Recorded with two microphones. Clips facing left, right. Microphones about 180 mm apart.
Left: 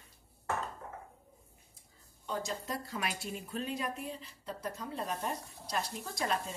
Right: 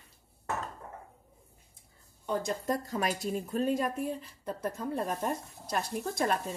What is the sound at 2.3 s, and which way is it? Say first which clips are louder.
Speech: right 6 dB; 50° right (ahead or behind).